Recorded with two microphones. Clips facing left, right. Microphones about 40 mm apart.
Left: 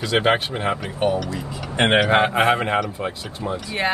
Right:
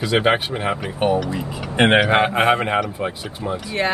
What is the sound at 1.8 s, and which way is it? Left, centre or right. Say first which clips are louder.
A man's voice: right 2 dB; centre.